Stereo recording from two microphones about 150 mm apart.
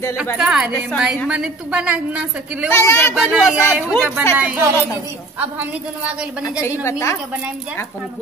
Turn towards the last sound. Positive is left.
turn(degrees=15)  # may be behind; listen again after turning